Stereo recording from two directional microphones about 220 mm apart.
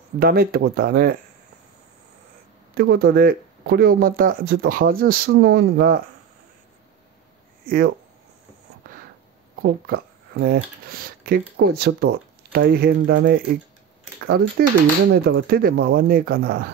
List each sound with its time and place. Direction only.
0.2 s speech: 40° right (ahead or behind)
2.7 s speech: 45° right (ahead or behind)
7.6 s speech: 45° right (ahead or behind)
9.6 s speech: 45° right (ahead or behind)
15.2 s speech: 45° right (ahead or behind)